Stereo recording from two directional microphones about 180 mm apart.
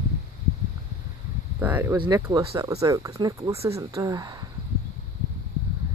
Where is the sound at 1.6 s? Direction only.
10° right (ahead or behind).